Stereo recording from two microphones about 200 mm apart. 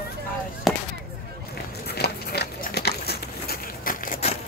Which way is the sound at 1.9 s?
55° left (ahead or behind).